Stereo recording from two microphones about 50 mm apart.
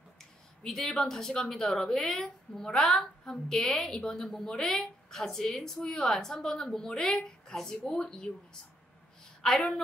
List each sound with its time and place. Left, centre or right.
0.2 s speech: centre
9.4 s speech: centre